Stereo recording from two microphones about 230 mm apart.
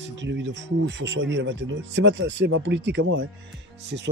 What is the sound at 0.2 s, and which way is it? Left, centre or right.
Speech, right.